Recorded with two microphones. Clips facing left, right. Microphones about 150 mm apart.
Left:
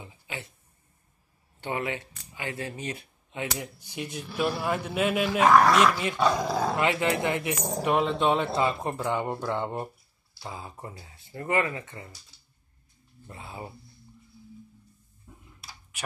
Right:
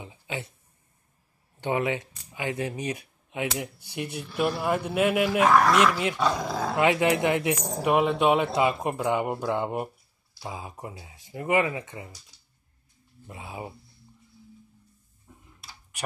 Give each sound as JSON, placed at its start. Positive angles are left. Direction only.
{"t": 0.0, "sound": "a sound", "side_deg": -20}
{"t": 1.6, "sound": "speech", "side_deg": -20}
{"t": 6.2, "sound": "dog", "side_deg": 0}
{"t": 6.8, "sound": "speech", "side_deg": -15}
{"t": 13.3, "sound": "speech", "side_deg": -15}